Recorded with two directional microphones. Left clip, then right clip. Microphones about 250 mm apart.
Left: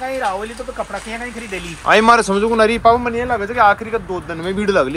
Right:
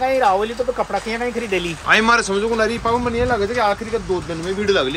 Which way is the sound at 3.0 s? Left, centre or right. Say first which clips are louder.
Even; centre.